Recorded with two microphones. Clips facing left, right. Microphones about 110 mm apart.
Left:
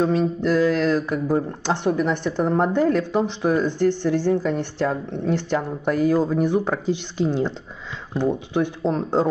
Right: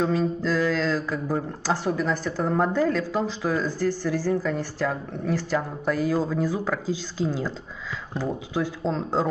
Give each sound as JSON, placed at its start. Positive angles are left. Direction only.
{"t": 0.0, "sound": "speech", "side_deg": 20}